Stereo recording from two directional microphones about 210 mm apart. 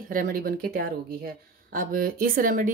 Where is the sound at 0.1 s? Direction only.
40° right (ahead or behind).